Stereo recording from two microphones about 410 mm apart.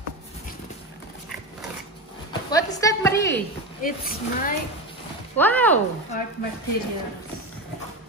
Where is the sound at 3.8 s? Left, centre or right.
Left.